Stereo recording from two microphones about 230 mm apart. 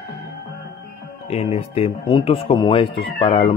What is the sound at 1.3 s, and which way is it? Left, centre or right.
Speech, left.